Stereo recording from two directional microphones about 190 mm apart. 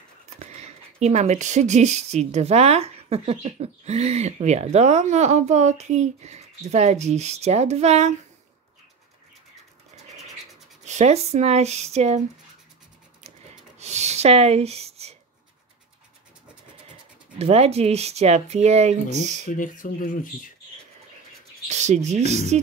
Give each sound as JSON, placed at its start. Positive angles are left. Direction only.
{"t": 0.4, "sound": "speech", "side_deg": -35}
{"t": 10.9, "sound": "speech", "side_deg": -35}
{"t": 13.7, "sound": "rub", "side_deg": -35}
{"t": 17.4, "sound": "speech", "side_deg": -35}
{"t": 19.5, "sound": "speech", "side_deg": 45}
{"t": 21.6, "sound": "speech", "side_deg": -35}